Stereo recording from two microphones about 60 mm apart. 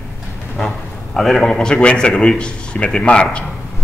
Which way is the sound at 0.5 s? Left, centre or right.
Centre.